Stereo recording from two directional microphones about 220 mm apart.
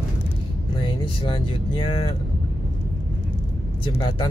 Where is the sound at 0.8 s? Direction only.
20° left (ahead or behind).